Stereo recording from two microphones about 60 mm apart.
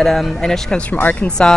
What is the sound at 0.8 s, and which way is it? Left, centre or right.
Speech, left.